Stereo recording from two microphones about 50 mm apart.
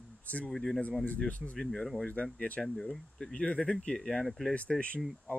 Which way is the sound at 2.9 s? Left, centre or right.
Centre.